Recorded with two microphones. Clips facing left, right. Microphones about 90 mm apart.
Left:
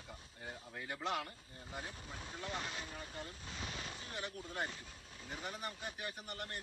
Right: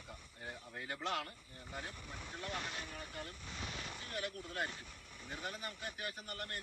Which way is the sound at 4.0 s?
25° left (ahead or behind).